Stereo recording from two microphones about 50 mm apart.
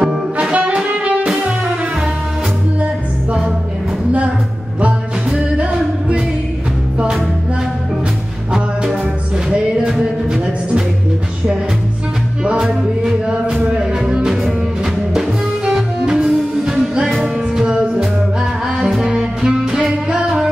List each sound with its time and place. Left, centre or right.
0.0 s saxophone: centre
5.6 s music: centre
9.5 s music: centre
12.4 s music: centre